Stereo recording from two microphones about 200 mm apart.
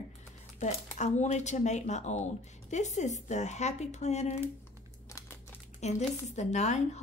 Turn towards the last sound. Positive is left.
turn(degrees=35)  # may be behind; listen again after turning